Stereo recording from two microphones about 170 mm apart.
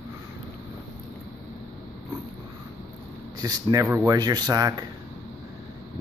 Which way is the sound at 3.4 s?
20° right (ahead or behind).